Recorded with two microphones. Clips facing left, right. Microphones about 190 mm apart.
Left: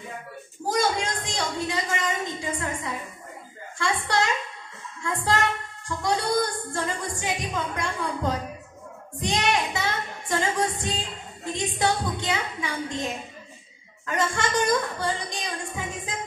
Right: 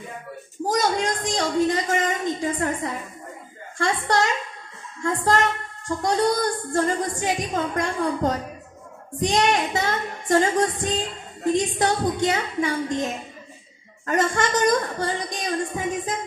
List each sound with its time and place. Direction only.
0.7 s a sound: 50° right (ahead or behind)
3.7 s a woman's voice: 50° right (ahead or behind)
9.2 s music: 50° right (ahead or behind)
11.5 s a woman's voice: 45° right (ahead or behind)
14.0 s a woman's voice: 45° right (ahead or behind)